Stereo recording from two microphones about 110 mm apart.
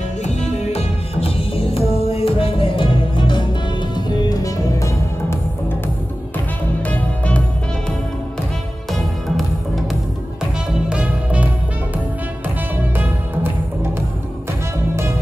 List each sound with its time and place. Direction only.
0.2 s music: 90° left; by 3.4 s 45° left (ahead or behind)
3.9 s music: 35° left (ahead or behind)
6.9 s music: 10° left (ahead or behind)
10.9 s music: 10° right (ahead or behind)
12.9 s music: 20° right (ahead or behind)